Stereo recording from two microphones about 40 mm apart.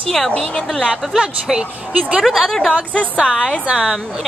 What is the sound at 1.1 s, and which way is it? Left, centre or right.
Speech, centre.